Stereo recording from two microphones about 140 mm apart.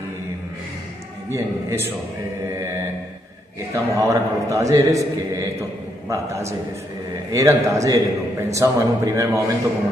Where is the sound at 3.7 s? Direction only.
20° right (ahead or behind).